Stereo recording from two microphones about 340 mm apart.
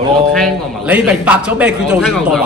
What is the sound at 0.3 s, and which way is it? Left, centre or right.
A man's voice, centre.